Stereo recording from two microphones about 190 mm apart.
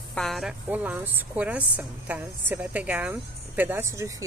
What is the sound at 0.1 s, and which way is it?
Speech, centre (ahead or behind).